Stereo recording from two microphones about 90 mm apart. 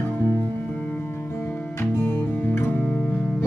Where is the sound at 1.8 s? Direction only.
25° left (ahead or behind).